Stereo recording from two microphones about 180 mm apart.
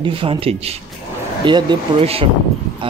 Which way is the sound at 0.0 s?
30° right (ahead or behind).